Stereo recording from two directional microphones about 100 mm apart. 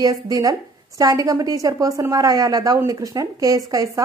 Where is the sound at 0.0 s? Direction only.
40° right (ahead or behind).